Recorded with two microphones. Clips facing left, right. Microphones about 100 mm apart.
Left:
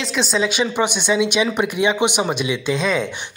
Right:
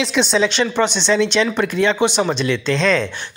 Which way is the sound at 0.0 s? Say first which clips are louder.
Right 4 dB; centre (ahead or behind).